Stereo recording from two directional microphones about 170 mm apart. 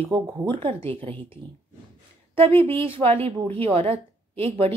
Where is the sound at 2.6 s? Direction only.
30° right (ahead or behind).